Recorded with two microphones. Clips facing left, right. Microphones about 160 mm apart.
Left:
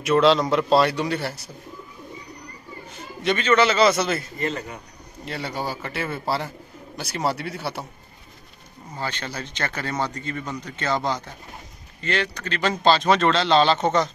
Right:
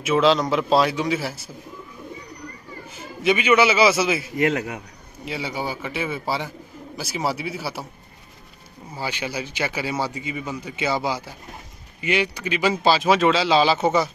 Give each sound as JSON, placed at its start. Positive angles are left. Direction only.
{"t": 0.0, "sound": "a man's voice", "side_deg": 0}
{"t": 2.9, "sound": "a man's voice", "side_deg": -5}
{"t": 4.4, "sound": "a man's voice", "side_deg": -75}
{"t": 5.2, "sound": "a man's voice", "side_deg": 0}
{"t": 8.9, "sound": "speech", "side_deg": -10}